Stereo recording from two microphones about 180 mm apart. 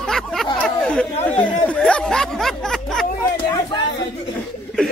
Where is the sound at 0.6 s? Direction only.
5° left (ahead or behind).